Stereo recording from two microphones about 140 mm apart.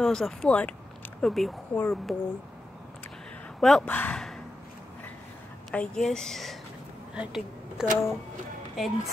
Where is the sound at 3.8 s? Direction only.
15° left (ahead or behind).